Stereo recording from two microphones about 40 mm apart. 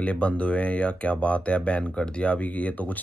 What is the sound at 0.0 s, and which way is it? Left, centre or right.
Speech, left.